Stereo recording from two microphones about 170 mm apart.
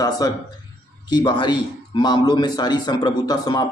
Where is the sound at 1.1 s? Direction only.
25° left (ahead or behind).